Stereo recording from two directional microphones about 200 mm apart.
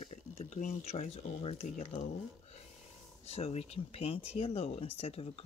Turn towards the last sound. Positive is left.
turn(degrees=30)  # may be behind; listen again after turning